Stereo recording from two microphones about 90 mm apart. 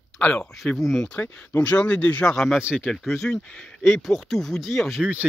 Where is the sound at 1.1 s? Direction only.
15° left (ahead or behind).